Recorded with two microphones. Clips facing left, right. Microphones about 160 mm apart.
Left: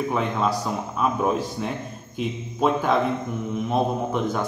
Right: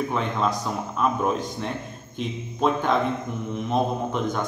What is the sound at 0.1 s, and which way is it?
A man's voice, 5° left (ahead or behind).